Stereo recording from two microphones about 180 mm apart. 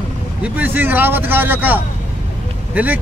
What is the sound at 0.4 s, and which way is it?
A man's voice, 10° right (ahead or behind).